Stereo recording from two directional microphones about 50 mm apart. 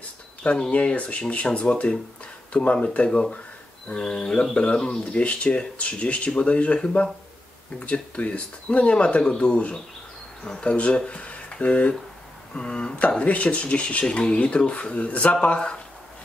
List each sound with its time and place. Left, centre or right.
0.7 s speech: left